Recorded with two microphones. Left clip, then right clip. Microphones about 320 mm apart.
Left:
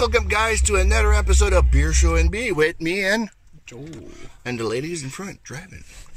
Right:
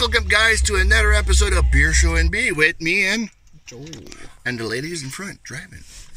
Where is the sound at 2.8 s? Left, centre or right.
Left.